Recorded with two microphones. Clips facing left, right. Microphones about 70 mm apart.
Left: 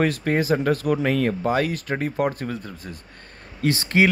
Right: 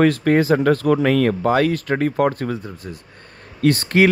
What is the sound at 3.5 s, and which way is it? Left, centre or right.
Speech, right.